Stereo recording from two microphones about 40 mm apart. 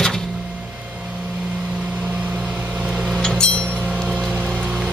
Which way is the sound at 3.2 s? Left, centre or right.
Centre.